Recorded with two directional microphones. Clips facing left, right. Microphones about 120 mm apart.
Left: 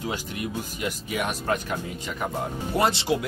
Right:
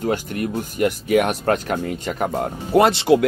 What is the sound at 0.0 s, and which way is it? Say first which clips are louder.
Speech: right 8 dB; 50° right (ahead or behind).